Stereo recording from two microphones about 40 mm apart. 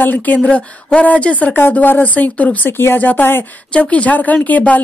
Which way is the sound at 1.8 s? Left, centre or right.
Left.